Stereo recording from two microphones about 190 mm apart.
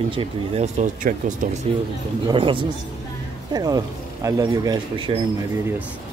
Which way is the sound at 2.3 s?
25° right (ahead or behind).